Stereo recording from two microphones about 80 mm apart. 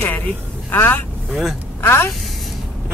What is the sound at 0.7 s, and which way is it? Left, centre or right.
A woman's voice, left.